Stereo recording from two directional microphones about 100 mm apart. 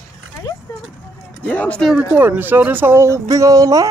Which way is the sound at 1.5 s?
15° left (ahead or behind).